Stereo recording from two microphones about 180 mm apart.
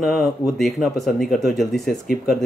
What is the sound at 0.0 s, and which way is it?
Speech, centre (ahead or behind).